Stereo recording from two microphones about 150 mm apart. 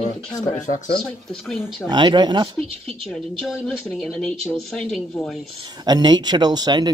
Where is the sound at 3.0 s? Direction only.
Centre (ahead or behind).